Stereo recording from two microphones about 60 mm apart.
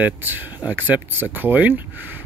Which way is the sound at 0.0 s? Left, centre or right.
Right.